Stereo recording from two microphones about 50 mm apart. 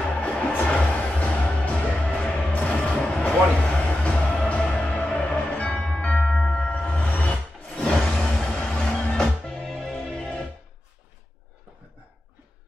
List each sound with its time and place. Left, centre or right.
0.2 s music: left
7.7 s a sound: centre
8.1 s music: centre